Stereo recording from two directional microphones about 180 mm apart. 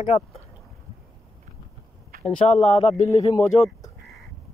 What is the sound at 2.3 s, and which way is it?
Speech, 35° left (ahead or behind).